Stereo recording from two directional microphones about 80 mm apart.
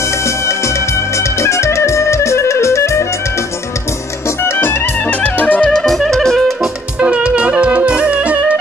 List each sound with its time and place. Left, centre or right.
0.2 s music: left
4.4 s music: left; by 6.7 s centre
7.0 s music: centre